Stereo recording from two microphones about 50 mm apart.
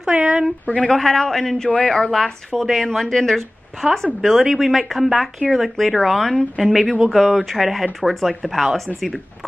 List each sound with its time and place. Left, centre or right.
0.1 s speech: right
0.7 s speech: left
0.9 s a man's voice: centre